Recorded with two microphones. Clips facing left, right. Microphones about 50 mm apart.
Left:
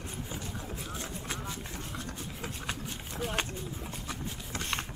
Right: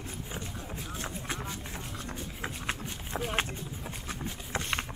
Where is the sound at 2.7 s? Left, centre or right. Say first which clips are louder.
Right 2 dB; centre.